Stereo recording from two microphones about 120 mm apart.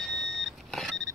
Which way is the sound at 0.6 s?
5° left (ahead or behind).